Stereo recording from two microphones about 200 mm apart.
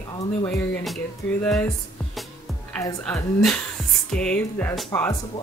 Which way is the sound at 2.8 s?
15° left (ahead or behind).